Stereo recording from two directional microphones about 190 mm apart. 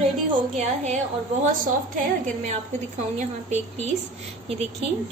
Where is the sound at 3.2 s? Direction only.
35° right (ahead or behind).